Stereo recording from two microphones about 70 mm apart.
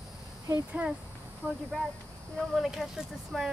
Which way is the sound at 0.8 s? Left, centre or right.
Centre.